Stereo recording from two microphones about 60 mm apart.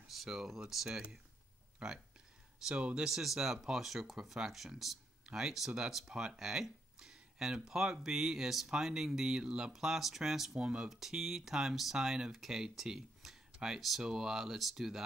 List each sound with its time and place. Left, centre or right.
0.1 s speech: centre
0.8 s speech: centre